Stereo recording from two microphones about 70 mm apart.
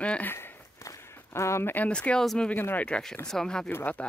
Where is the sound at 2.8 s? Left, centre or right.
Centre.